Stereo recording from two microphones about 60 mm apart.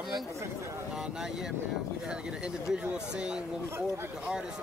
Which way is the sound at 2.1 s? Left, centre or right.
Centre.